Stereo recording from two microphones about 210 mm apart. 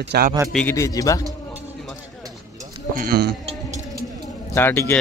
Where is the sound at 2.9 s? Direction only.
45° right (ahead or behind).